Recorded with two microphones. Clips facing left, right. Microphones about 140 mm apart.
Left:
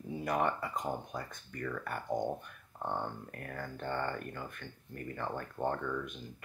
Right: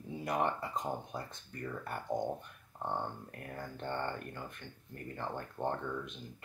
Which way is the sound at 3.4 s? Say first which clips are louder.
Left 1 dB; 20° right (ahead or behind).